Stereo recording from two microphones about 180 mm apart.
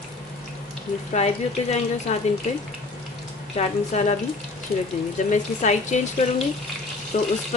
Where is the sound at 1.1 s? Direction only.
40° left (ahead or behind).